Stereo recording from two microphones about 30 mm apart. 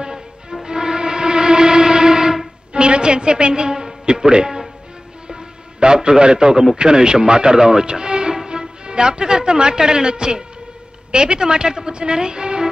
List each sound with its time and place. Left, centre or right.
0.0 s music: right
5.8 s a man's voice: right